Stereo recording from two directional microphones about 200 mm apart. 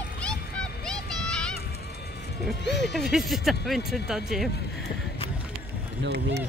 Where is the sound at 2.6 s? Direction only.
60° left (ahead or behind).